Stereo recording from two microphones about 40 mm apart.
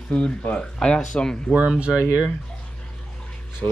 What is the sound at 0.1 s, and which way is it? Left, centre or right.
Speech, left.